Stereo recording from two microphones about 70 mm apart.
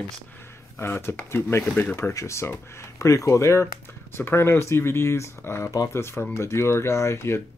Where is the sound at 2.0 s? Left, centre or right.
Left.